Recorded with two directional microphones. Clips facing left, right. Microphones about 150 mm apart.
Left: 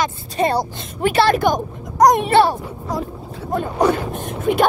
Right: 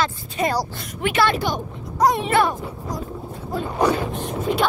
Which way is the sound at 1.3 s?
50° left (ahead or behind).